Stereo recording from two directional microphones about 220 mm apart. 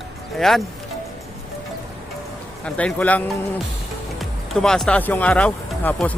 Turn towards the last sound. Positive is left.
turn(degrees=5)  # may be behind; listen again after turning